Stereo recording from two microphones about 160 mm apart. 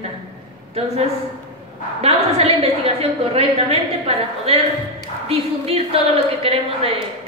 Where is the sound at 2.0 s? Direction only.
40° right (ahead or behind).